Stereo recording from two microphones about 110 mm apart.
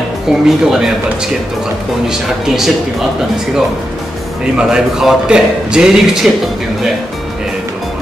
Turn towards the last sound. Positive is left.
turn(degrees=-5)  # may be behind; listen again after turning